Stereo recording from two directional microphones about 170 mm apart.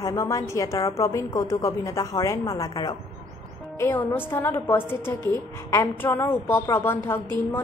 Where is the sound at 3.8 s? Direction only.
10° left (ahead or behind).